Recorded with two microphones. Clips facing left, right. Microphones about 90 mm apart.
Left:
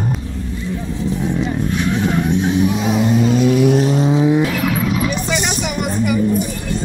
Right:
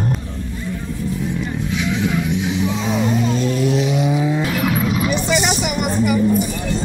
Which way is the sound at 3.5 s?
60° left (ahead or behind).